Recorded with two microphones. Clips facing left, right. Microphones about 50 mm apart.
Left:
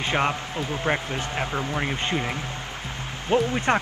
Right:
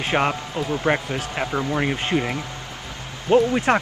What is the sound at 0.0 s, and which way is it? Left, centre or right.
Speech, centre.